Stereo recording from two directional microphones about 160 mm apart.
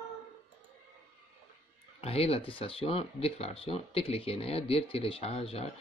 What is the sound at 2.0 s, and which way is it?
Speech, 40° left (ahead or behind).